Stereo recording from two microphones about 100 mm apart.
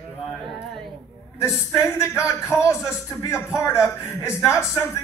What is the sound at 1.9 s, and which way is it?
A man's voice, 25° left (ahead or behind).